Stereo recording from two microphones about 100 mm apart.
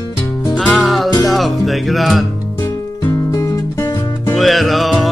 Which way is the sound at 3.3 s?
35° left (ahead or behind).